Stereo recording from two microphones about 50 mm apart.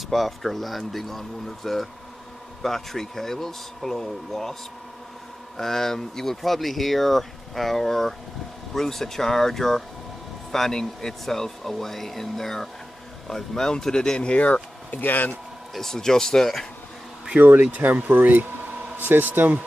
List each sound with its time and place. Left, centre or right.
0.1 s speech: centre
5.6 s speech: centre; by 15.3 s left
15.7 s speech: centre
17.4 s speech: right